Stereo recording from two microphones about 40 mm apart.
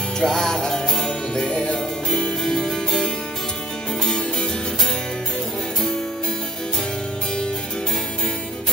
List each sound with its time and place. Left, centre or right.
0.2 s music: centre
2.1 s harpsichord: centre
4.0 s music: centre